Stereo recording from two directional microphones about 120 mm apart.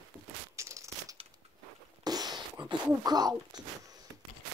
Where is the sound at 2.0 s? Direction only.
35° right (ahead or behind).